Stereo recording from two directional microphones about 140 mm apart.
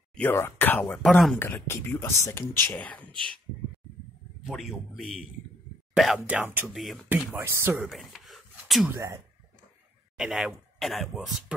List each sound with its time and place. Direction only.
0.1 s speech: 15° left (ahead or behind)
1.0 s speech: centre (ahead or behind)
1.4 s speech: 15° left (ahead or behind)
4.5 s speech: centre (ahead or behind)
6.2 s speech: 10° right (ahead or behind)
6.7 s speech: centre (ahead or behind)
7.3 s speech: 20° right (ahead or behind)
7.9 s a sound: centre (ahead or behind)
8.9 s speech: 20° right (ahead or behind)
10.1 s speech: centre (ahead or behind)